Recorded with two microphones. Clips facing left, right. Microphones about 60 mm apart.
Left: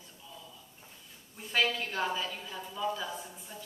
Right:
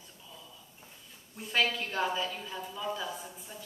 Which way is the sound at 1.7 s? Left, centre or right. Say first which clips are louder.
Even; right.